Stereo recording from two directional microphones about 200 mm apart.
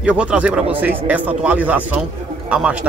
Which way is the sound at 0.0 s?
5° right (ahead or behind).